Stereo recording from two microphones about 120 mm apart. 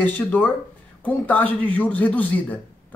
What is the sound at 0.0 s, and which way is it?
Speech, 15° left (ahead or behind).